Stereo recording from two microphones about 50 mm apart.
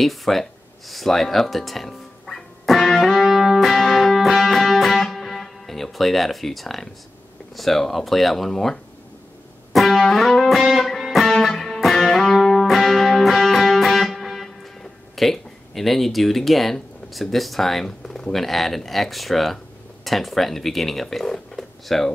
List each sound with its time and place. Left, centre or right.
0.0 s a sound: centre
3.3 s music: centre
7.5 s speech: centre
9.7 s music: centre
20.1 s speech: centre